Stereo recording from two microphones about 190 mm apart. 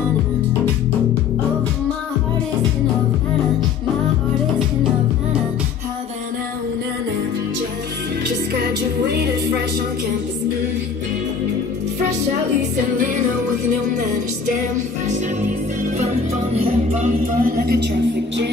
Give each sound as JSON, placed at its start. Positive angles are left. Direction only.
{"t": 9.0, "sound": "music", "side_deg": -60}
{"t": 13.7, "sound": "music", "side_deg": -40}
{"t": 15.8, "sound": "music", "side_deg": -35}
{"t": 17.4, "sound": "speech", "side_deg": -50}